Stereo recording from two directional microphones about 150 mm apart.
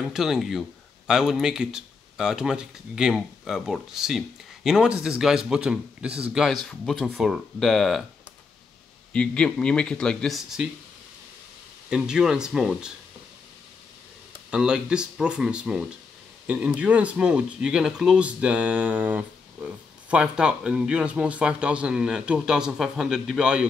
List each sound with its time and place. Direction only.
0.0 s speech: 5° right (ahead or behind)
9.1 s speech: 5° left (ahead or behind)
11.9 s speech: 5° right (ahead or behind)
14.5 s speech: 5° right (ahead or behind)